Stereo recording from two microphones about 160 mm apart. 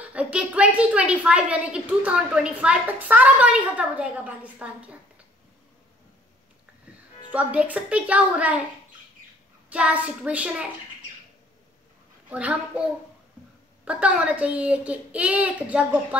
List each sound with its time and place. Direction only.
0.0 s a woman's voice: 10° right (ahead or behind)
7.3 s a woman's voice: 10° right (ahead or behind)
9.7 s a woman's voice: 10° right (ahead or behind)
12.3 s a woman's voice: 10° right (ahead or behind)
13.8 s a woman's voice: 10° right (ahead or behind)